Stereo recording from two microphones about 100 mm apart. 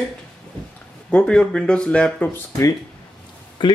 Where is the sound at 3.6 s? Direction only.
55° left (ahead or behind).